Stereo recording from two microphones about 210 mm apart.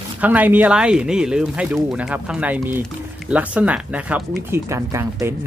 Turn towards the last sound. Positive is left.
turn(degrees=-15)  # may be behind; listen again after turning